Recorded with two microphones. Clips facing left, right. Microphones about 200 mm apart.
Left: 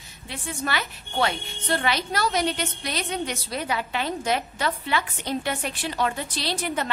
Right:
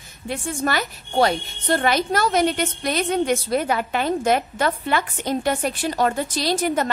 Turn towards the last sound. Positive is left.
turn(degrees=-45)  # may be behind; listen again after turning